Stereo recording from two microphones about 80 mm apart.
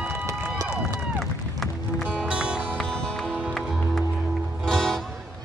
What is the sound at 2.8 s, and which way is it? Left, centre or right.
Music, centre.